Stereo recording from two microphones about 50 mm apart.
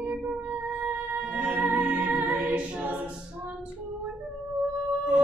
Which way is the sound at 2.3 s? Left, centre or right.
Right.